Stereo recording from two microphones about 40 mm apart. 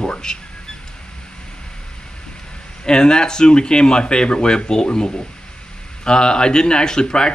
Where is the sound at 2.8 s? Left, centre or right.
Left.